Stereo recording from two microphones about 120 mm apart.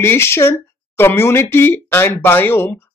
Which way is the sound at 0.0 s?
20° left (ahead or behind).